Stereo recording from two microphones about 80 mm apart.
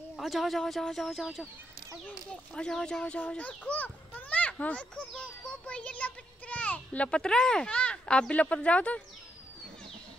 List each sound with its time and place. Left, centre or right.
0.1 s speech: centre
2.5 s a child's voice: centre